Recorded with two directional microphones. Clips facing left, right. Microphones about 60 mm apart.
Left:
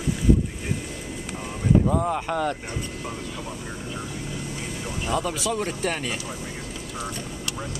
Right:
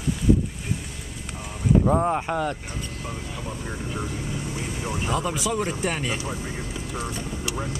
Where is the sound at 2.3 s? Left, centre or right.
Centre.